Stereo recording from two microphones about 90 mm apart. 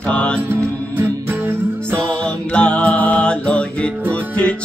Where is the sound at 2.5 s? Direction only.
10° left (ahead or behind).